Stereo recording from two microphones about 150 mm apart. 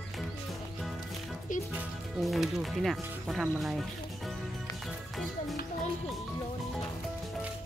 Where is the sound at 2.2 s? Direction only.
Centre (ahead or behind).